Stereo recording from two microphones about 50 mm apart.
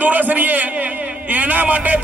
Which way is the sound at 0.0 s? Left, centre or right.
Right.